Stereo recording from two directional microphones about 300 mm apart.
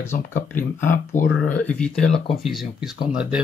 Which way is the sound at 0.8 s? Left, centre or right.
Left.